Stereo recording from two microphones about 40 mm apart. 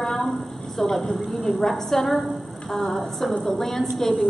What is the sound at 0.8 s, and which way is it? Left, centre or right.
A woman's voice, centre.